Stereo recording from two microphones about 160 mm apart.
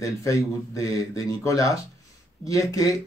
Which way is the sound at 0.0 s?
20° left (ahead or behind).